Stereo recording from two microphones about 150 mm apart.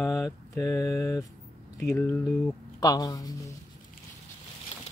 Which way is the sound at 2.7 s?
25° left (ahead or behind).